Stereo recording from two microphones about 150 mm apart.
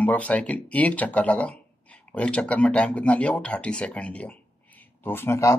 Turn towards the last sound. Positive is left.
turn(degrees=20)  # may be behind; listen again after turning